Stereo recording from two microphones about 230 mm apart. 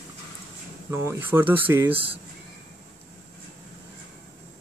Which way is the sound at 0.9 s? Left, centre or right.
Centre.